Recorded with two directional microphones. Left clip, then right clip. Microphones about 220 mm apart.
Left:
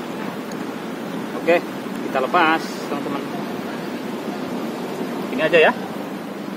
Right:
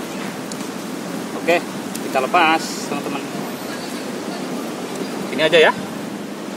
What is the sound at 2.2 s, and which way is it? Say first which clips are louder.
Speech: right 2 dB; 5° right (ahead or behind).